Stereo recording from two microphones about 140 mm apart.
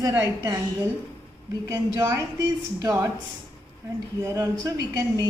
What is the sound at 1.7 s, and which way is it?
A woman's voice, 20° right (ahead or behind).